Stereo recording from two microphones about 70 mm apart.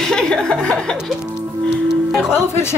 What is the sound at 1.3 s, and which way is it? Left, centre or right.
Music, centre.